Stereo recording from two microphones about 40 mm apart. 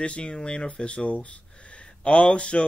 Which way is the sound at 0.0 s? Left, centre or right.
Left.